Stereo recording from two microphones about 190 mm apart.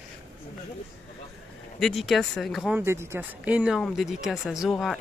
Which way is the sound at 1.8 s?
Centre (ahead or behind).